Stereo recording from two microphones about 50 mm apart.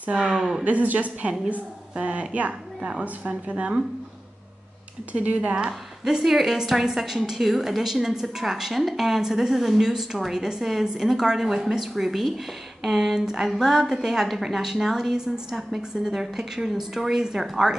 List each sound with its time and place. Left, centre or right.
0.0 s a woman's voice: right
0.7 s a woman's voice: right
5.1 s speech: right
5.7 s a woman's voice: centre
13.2 s a woman's voice: centre
13.5 s a woman's voice: centre